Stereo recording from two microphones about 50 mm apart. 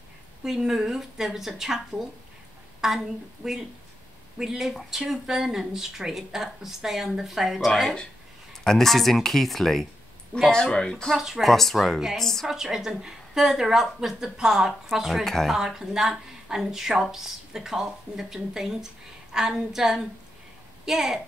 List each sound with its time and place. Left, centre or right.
0.4 s a woman's voice: centre
10.5 s speech: centre
11.1 s speech: centre
11.4 s speech: centre
12.4 s speech: centre
15.2 s speech: centre
15.5 s speech: centre